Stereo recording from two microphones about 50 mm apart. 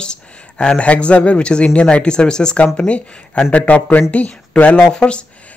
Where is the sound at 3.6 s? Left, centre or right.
Left.